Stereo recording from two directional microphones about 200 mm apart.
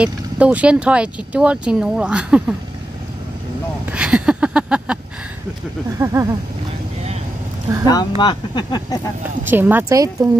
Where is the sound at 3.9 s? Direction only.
5° right (ahead or behind).